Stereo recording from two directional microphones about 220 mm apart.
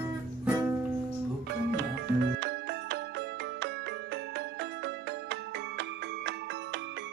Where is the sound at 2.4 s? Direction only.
50° right (ahead or behind).